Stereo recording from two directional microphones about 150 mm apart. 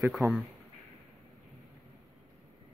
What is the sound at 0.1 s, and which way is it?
Speech, centre (ahead or behind).